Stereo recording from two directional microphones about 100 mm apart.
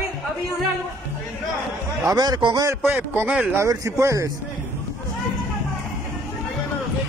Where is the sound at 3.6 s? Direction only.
30° right (ahead or behind).